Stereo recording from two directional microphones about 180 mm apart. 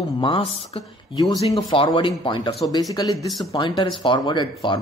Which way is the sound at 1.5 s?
25° left (ahead or behind).